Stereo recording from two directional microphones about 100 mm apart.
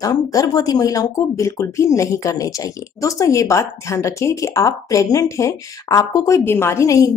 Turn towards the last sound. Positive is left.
turn(degrees=30)  # may be behind; listen again after turning